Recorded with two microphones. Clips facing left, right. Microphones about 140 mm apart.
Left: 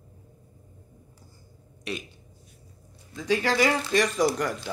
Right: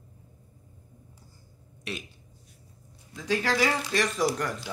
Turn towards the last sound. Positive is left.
turn(degrees=-5)  # may be behind; listen again after turning